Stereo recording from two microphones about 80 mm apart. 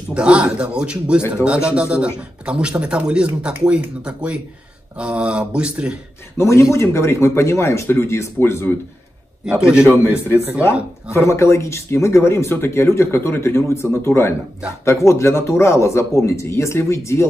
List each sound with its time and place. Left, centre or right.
0.1 s a man's voice: centre
6.3 s speech: left
9.8 s speech: left